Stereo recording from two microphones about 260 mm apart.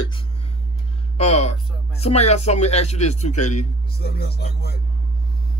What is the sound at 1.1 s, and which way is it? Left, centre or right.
Speech, left.